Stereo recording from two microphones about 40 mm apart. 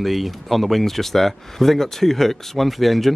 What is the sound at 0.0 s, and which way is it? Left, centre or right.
Speech, centre.